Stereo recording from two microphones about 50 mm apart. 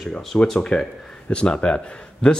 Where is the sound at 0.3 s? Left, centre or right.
Centre.